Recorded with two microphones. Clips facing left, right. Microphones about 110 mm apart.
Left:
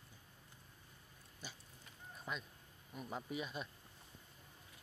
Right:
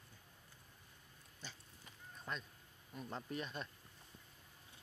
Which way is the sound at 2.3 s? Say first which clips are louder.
Even; 5° left (ahead or behind).